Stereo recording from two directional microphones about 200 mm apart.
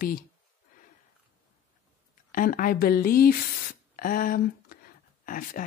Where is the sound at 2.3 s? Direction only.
45° left (ahead or behind).